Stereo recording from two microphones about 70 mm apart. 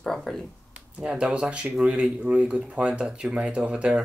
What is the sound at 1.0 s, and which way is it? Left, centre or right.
Speech, centre.